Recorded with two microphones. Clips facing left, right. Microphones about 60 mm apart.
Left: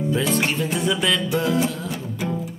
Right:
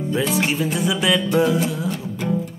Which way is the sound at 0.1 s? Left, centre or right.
Centre.